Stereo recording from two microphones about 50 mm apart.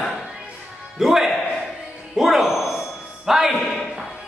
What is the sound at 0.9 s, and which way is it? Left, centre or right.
Music, centre.